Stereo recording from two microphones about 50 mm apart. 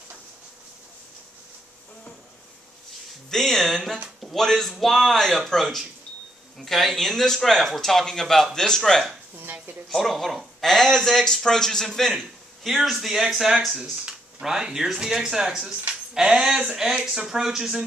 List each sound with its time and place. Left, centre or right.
3.3 s speech: centre
9.4 s a sound: right
9.8 s speech: centre
12.8 s speech: centre